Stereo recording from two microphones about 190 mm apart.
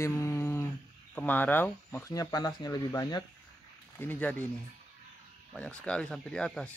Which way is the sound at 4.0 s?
10° left (ahead or behind).